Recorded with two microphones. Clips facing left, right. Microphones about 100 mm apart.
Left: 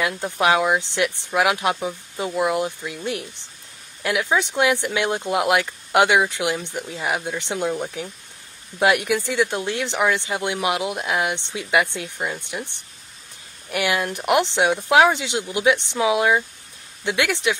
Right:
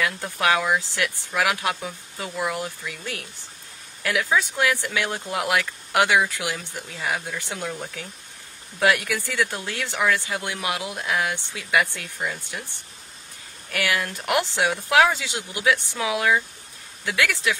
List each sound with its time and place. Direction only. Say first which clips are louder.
0.0 s speech: left 3 dB; 20° left (ahead or behind)